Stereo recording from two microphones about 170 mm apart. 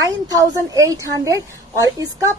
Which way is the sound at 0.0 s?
20° right (ahead or behind).